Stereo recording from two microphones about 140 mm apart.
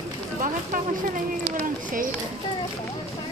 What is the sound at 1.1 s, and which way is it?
Run, 75° right (ahead or behind).